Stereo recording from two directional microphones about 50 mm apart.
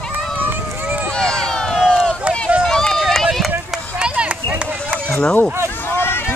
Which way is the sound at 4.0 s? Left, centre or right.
Right.